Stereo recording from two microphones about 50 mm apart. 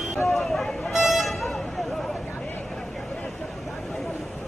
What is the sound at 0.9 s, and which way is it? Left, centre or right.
Music, centre.